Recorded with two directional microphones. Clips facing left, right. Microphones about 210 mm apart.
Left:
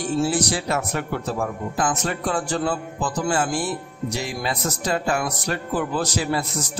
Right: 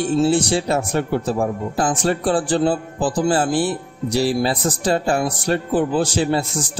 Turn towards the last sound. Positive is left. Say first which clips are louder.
# right 5 dB
turn(degrees=-30)  # may be behind; listen again after turning